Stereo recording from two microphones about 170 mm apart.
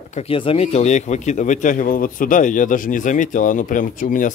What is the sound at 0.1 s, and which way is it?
Speech, 35° left (ahead or behind).